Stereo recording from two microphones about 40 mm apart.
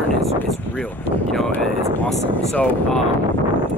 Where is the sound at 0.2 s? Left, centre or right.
Centre.